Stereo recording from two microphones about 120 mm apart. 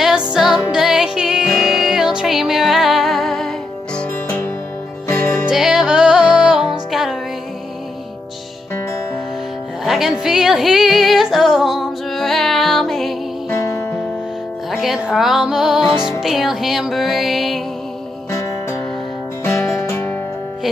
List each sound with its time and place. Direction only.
0.3 s music: centre (ahead or behind)
5.5 s music: 5° right (ahead or behind)
9.8 s music: 5° right (ahead or behind)
13.5 s music: 25° left (ahead or behind)
14.7 s music: 5° right (ahead or behind)
19.4 s music: 20° left (ahead or behind)